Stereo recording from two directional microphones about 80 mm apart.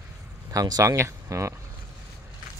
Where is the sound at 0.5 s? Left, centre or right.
Right.